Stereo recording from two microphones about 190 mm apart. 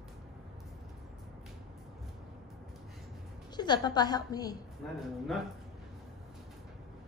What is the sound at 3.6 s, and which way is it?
Speech, 20° left (ahead or behind).